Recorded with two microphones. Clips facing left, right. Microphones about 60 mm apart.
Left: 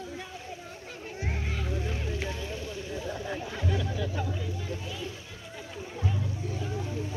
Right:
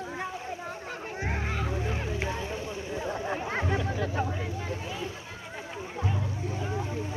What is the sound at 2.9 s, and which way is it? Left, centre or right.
Hubbub, right.